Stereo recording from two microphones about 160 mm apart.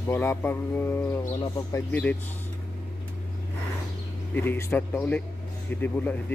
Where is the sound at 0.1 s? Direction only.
15° left (ahead or behind).